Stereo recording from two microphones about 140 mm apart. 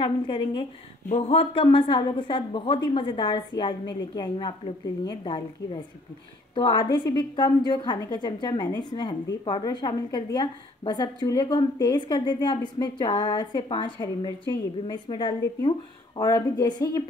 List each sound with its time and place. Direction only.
0.0 s a woman's voice: 35° left (ahead or behind)